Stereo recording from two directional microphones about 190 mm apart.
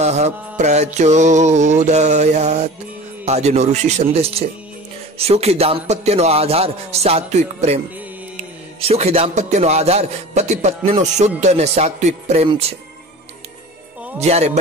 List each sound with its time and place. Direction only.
0.0 s speech: 35° right (ahead or behind)
14.2 s speech: 35° right (ahead or behind)